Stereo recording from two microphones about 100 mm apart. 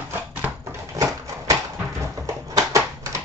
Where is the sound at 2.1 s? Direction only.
30° right (ahead or behind).